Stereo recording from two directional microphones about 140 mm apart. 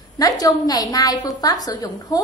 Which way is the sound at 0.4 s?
25° left (ahead or behind).